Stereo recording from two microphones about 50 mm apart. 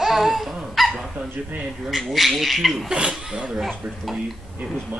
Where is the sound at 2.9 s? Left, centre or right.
Centre.